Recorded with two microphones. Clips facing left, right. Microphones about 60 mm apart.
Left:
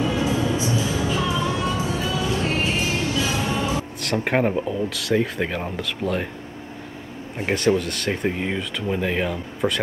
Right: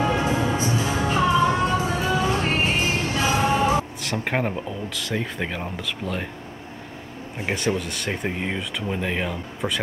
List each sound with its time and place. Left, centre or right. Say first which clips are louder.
0.0 s music: even; right
4.0 s speech: left 4 dB; centre
7.3 s speech: left 4 dB; centre